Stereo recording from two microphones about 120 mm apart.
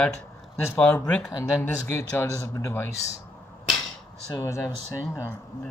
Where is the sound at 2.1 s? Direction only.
25° left (ahead or behind).